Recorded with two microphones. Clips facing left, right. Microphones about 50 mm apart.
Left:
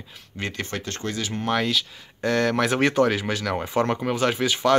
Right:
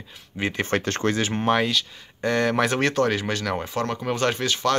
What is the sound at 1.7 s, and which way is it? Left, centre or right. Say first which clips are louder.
Speech: even; centre.